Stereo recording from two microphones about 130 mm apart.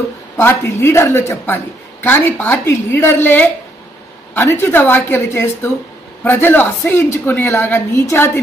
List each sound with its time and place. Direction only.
0.4 s a woman's voice: 15° left (ahead or behind)